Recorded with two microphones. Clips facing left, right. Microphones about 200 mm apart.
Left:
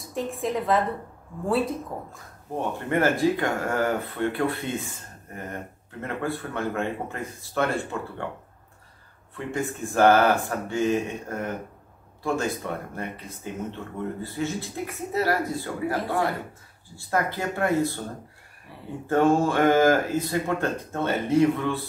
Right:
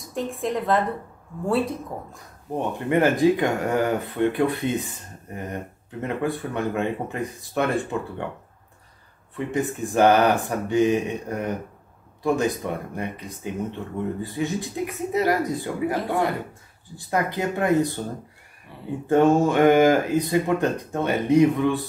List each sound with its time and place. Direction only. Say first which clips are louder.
0.1 s a woman's voice: right 1 dB; centre (ahead or behind)
2.5 s speech: right 3 dB; 15° right (ahead or behind)
9.5 s speech: right 3 dB; 20° right (ahead or behind)
19.0 s speech: right 3 dB; 20° right (ahead or behind)